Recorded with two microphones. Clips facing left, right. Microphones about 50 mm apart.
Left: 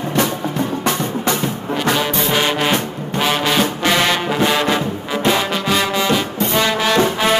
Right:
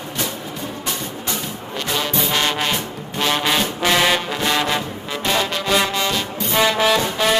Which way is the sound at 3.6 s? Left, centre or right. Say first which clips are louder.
Left 2 dB; centre.